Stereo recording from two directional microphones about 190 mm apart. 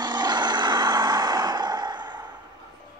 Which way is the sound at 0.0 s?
20° right (ahead or behind).